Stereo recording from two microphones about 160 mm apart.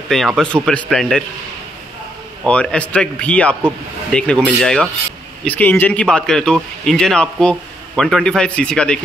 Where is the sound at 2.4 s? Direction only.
5° left (ahead or behind).